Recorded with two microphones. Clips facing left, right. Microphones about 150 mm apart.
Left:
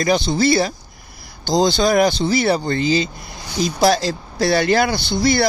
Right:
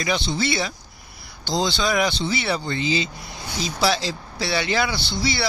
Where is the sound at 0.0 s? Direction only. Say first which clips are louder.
Left 7 dB; 40° left (ahead or behind).